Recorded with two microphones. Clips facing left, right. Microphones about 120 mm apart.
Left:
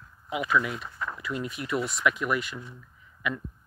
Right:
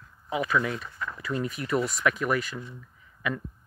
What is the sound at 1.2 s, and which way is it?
Speech, 40° right (ahead or behind).